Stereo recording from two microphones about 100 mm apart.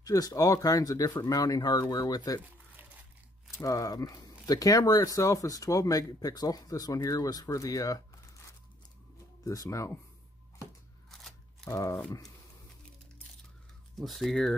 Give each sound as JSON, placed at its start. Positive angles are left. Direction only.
{"t": 0.0, "sound": "speech", "side_deg": 35}
{"t": 3.5, "sound": "speech", "side_deg": 35}
{"t": 9.4, "sound": "speech", "side_deg": 35}
{"t": 11.1, "sound": "a sound", "side_deg": 5}
{"t": 11.7, "sound": "speech", "side_deg": 35}
{"t": 13.9, "sound": "speech", "side_deg": 0}